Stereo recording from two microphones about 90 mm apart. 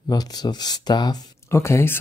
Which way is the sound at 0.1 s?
50° left (ahead or behind).